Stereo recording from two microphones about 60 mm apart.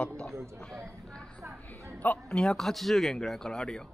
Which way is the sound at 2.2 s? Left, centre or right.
Centre.